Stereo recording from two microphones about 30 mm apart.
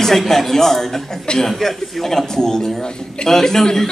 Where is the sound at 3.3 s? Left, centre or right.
Centre.